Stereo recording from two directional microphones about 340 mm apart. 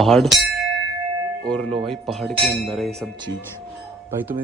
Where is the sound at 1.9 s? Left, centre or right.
Centre.